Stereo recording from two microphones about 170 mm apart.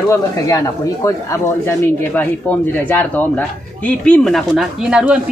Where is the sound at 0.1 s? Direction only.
20° left (ahead or behind).